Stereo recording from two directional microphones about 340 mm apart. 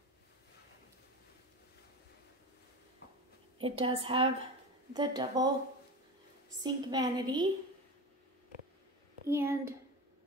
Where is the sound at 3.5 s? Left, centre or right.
Centre.